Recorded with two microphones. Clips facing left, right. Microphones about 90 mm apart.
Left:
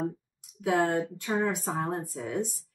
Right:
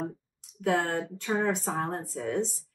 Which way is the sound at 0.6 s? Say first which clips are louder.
Left 2 dB; centre (ahead or behind).